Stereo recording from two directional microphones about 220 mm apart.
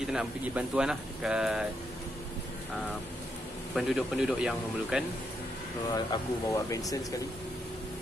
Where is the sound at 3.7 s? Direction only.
Centre (ahead or behind).